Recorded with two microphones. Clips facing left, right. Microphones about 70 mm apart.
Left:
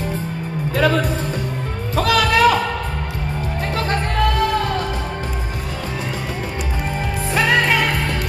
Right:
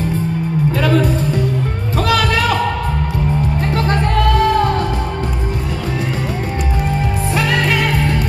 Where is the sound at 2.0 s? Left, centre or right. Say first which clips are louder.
Right 1 dB; right.